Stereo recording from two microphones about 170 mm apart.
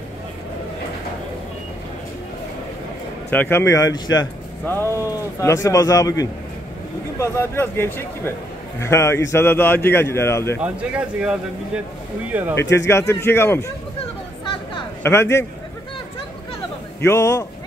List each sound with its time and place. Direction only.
3.3 s a man's voice: 10° left (ahead or behind)
4.6 s a man's voice: 10° left (ahead or behind)
10.6 s speech: 5° right (ahead or behind)
12.5 s a man's voice: 15° left (ahead or behind)
15.0 s a man's voice: 15° left (ahead or behind)
17.0 s a man's voice: 15° left (ahead or behind)